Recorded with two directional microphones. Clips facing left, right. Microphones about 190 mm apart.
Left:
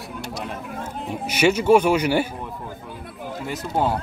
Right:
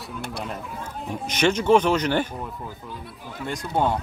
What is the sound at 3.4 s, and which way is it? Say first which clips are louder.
Speech: even; 5° left (ahead or behind).